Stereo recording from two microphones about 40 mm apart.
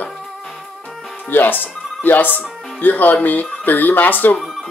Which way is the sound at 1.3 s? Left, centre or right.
Left.